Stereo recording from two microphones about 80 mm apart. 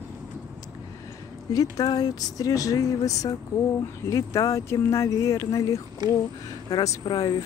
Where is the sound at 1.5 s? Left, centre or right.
Left.